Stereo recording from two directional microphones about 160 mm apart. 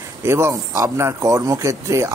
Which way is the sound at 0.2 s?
15° right (ahead or behind).